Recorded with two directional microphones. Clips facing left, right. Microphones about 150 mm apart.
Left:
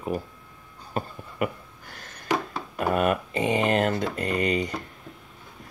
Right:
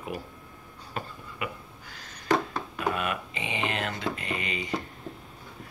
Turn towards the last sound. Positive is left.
turn(degrees=40)  # may be behind; listen again after turning